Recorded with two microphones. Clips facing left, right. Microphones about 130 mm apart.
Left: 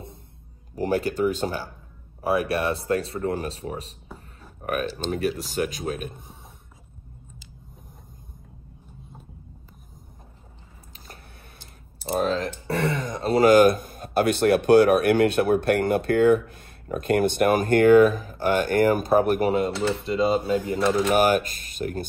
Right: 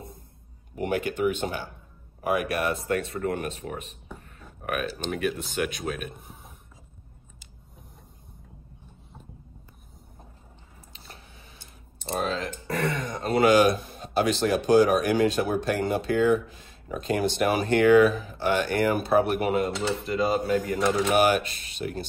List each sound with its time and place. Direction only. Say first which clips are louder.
0.7 s speech: left 3 dB; 35° left (ahead or behind)
12.2 s speech: left 5 dB; 40° left (ahead or behind)
20.1 s speech: left 2 dB; 25° left (ahead or behind)
20.8 s speech: left 3 dB; 5° right (ahead or behind)
21.2 s speech: left 2 dB; 45° left (ahead or behind)